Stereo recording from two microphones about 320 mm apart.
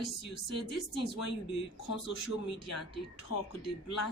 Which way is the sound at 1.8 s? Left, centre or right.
Left.